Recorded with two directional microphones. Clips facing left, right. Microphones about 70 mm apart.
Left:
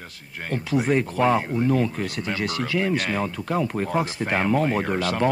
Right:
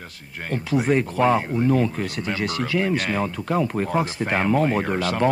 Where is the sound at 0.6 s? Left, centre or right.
Right.